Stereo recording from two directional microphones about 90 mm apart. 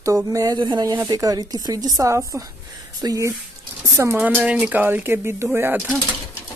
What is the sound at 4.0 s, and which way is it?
Speech, 30° right (ahead or behind).